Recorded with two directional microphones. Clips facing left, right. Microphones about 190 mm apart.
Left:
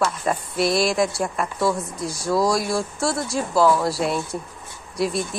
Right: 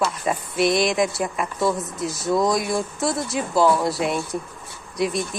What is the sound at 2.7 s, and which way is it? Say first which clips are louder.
Speech: even; 20° right (ahead or behind).